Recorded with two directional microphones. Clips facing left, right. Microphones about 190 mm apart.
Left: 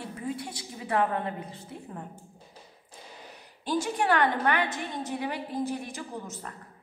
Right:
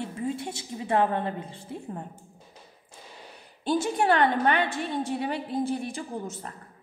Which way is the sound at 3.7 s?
25° right (ahead or behind).